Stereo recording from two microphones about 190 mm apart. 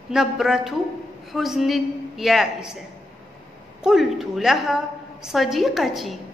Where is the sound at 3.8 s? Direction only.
Centre (ahead or behind).